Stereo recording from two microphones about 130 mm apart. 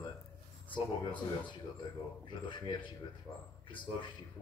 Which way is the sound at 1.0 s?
35° left (ahead or behind).